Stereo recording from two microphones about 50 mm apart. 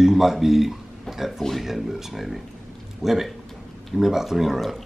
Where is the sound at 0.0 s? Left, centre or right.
Centre.